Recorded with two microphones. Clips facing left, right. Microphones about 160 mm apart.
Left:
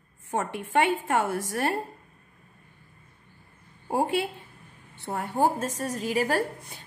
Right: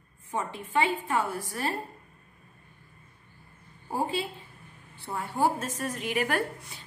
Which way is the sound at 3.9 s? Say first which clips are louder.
Left 4 dB; 65° left (ahead or behind).